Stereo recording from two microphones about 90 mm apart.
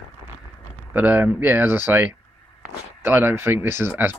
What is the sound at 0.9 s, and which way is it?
Speech, 20° right (ahead or behind).